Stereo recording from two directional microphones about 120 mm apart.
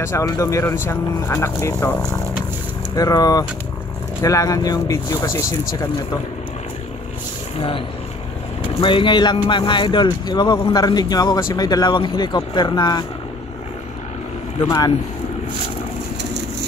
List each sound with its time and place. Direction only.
0.0 s speech: 25° left (ahead or behind)
3.0 s speech: 30° left (ahead or behind)
8.8 s speech: 45° left (ahead or behind)